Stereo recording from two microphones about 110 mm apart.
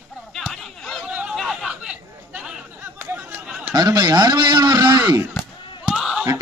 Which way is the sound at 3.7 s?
35° right (ahead or behind).